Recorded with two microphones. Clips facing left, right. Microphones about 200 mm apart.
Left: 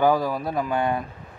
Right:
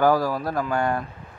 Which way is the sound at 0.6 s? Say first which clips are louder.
Left 1 dB; 20° left (ahead or behind).